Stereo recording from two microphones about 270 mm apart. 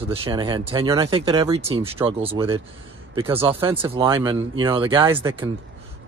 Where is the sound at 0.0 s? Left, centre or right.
Right.